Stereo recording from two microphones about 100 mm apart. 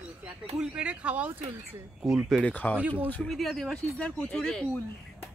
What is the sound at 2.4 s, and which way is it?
Speech, 15° left (ahead or behind).